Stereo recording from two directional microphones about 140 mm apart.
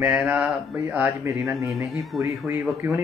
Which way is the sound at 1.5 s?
Centre (ahead or behind).